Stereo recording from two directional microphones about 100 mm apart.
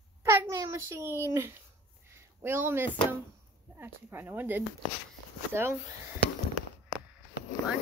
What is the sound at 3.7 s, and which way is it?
Speech, 20° right (ahead or behind).